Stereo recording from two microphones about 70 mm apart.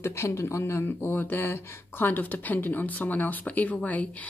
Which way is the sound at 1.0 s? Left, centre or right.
Left.